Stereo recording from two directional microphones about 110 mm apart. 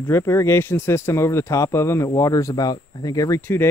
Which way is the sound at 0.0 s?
20° left (ahead or behind).